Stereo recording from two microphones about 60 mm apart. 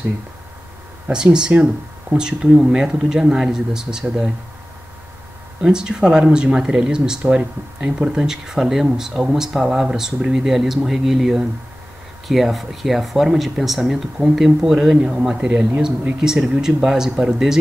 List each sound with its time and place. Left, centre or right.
1.1 s speech: centre
5.6 s speech: centre
16.3 s speech: centre